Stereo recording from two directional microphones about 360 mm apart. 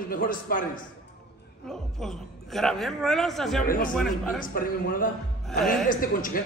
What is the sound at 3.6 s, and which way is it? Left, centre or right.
Speech, left.